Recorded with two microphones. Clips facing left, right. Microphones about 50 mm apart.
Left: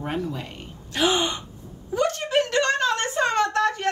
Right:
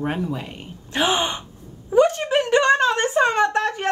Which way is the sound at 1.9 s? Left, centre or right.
Centre.